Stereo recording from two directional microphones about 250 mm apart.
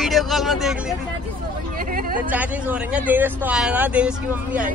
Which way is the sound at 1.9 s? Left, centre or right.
Right.